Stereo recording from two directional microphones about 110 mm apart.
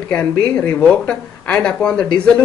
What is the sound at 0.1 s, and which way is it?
Speech, 10° left (ahead or behind).